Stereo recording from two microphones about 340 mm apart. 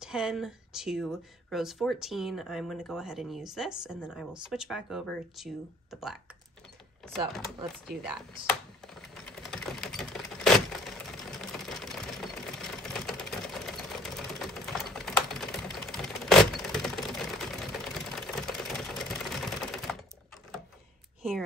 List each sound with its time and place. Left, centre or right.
0.0 s speech: centre
9.1 s typewriter: centre
21.2 s a sound: centre